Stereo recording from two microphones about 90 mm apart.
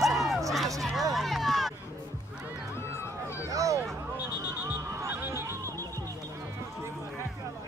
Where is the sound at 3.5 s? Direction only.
40° right (ahead or behind).